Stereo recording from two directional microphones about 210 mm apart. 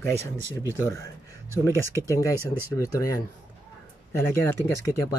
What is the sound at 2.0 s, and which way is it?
Speech, 15° left (ahead or behind).